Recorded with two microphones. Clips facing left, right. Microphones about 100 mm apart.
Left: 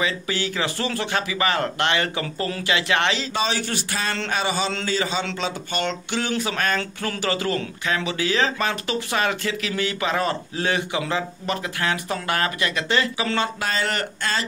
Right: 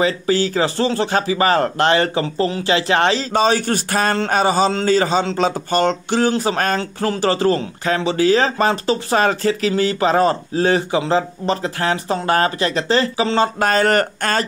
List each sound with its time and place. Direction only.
0.0 s speech: 35° right (ahead or behind)
13.6 s speech: 45° right (ahead or behind)